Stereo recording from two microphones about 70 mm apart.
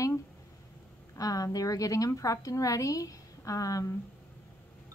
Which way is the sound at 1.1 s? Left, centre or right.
Left.